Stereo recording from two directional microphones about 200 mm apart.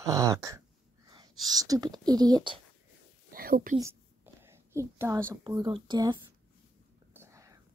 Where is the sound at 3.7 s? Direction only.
15° right (ahead or behind).